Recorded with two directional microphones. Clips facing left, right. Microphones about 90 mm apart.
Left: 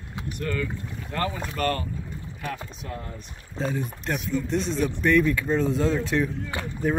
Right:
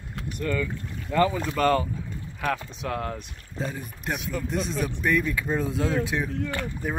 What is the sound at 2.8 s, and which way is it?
Speech, 90° right.